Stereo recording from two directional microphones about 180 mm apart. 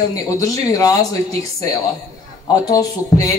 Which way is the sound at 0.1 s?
20° left (ahead or behind).